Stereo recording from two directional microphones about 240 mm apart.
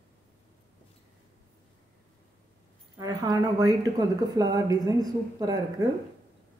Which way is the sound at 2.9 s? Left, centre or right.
Centre.